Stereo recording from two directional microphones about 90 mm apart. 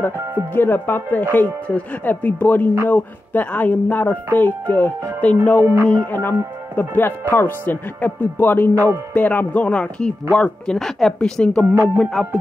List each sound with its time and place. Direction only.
0.6 s music: 20° left (ahead or behind)
5.2 s speech: 15° left (ahead or behind)
5.6 s music: 30° right (ahead or behind)
6.8 s music: 20° left (ahead or behind)
9.1 s speech: 20° left (ahead or behind)
11.7 s music: 30° right (ahead or behind)
12.0 s music: 5° left (ahead or behind)